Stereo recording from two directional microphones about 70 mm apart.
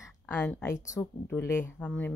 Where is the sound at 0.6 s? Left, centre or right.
Left.